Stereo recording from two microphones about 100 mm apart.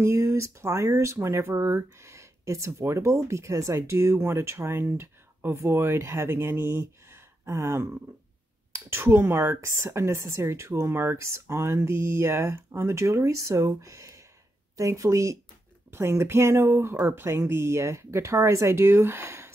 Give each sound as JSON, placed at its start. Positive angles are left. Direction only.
{"t": 0.0, "sound": "a woman's voice", "side_deg": -25}